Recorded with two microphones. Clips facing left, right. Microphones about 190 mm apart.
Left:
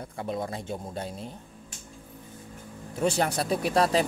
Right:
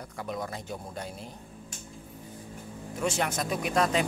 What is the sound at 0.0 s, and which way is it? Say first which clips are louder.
Speech: left 3 dB; 25° left (ahead or behind).